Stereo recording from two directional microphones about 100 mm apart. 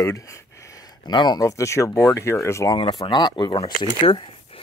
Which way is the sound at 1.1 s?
45° left (ahead or behind).